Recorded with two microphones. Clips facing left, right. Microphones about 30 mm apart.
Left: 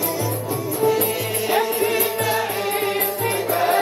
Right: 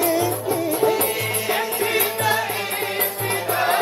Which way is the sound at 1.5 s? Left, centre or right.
Right.